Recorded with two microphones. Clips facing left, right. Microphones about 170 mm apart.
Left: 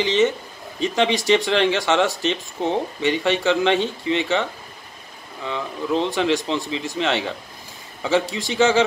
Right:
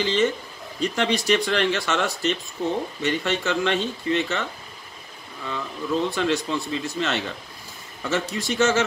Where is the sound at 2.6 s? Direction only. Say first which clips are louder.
Left 3 dB; 75° left (ahead or behind).